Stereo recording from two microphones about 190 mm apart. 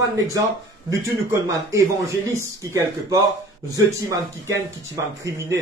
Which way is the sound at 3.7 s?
15° right (ahead or behind).